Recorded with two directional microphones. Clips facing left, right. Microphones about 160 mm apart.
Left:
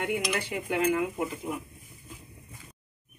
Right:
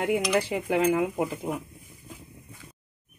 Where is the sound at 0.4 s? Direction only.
30° right (ahead or behind).